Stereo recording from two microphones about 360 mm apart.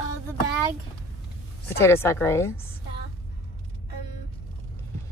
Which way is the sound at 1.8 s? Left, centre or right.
Centre.